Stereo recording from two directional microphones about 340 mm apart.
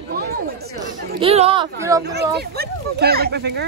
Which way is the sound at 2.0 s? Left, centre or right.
Right.